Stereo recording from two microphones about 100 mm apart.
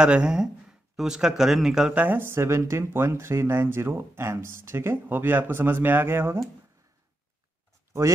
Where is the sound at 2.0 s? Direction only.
20° right (ahead or behind).